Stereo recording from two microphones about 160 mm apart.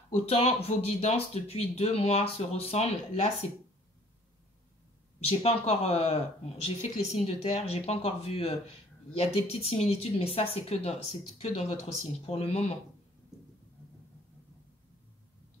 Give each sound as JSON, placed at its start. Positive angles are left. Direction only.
{"t": 0.1, "sound": "speech", "side_deg": 40}
{"t": 5.2, "sound": "speech", "side_deg": 40}